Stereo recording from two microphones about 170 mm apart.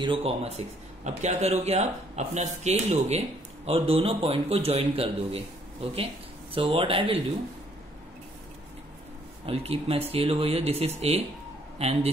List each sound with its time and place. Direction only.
0.0 s a man's voice: 35° right (ahead or behind)
9.5 s a man's voice: 35° right (ahead or behind)